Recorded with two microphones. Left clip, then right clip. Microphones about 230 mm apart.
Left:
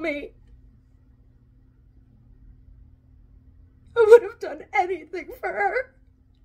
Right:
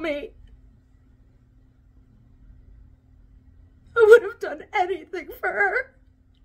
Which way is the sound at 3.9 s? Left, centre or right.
Centre.